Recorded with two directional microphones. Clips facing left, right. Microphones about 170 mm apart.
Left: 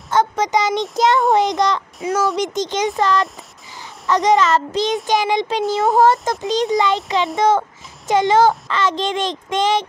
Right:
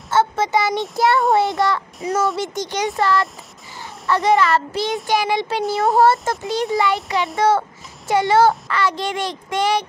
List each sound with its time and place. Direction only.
0.1 s a child's voice: 15° left (ahead or behind)
2.0 s a child's voice: centre (ahead or behind)
2.3 s a child's voice: 20° left (ahead or behind)